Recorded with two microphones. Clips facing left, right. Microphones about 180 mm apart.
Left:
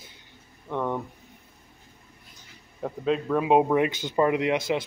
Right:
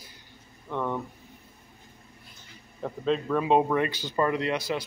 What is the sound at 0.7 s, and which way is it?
Speech, 15° left (ahead or behind).